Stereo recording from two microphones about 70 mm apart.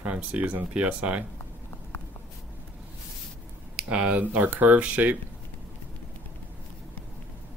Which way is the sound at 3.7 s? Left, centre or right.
Centre.